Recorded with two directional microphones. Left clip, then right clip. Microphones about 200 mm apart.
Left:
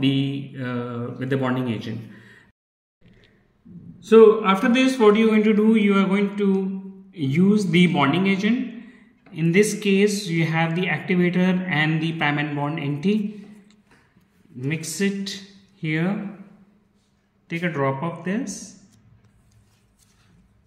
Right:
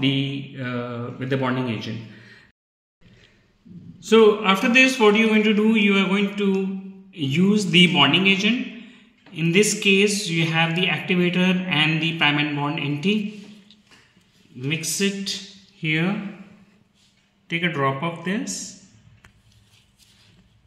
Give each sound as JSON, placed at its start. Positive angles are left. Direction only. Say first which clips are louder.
{"t": 0.0, "sound": "a man's voice", "louder": "even", "side_deg": 10}
{"t": 4.0, "sound": "a man's voice", "louder": "left 3 dB", "side_deg": 10}
{"t": 14.6, "sound": "a man's voice", "louder": "right 2 dB", "side_deg": 15}
{"t": 17.5, "sound": "speech", "louder": "right 2 dB", "side_deg": 5}